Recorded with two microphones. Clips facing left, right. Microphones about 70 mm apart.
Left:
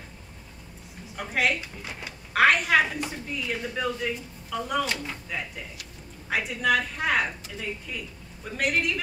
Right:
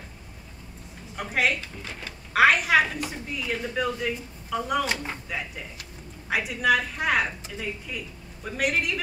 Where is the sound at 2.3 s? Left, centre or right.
Centre.